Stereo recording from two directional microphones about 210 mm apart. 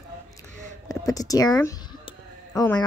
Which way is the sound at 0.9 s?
15° left (ahead or behind).